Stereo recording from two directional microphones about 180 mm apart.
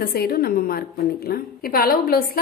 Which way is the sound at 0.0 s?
55° left (ahead or behind).